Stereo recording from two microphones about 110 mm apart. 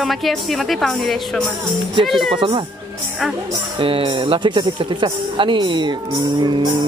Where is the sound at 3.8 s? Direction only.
55° right (ahead or behind).